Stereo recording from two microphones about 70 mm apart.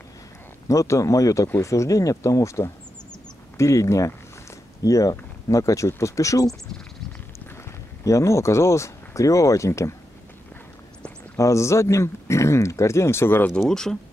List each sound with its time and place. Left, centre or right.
0.7 s speech: left
8.0 s speech: left
11.3 s speech: left
13.6 s speech: centre